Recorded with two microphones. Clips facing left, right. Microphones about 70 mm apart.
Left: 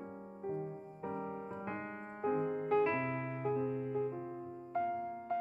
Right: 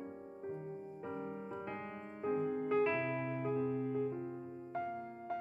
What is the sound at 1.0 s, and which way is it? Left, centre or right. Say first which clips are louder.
Music: left 4 dB; left.